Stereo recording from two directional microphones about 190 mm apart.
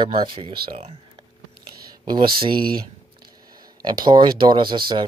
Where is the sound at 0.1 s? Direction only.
30° right (ahead or behind).